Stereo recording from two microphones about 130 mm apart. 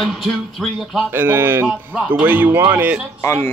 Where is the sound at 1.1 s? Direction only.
15° right (ahead or behind).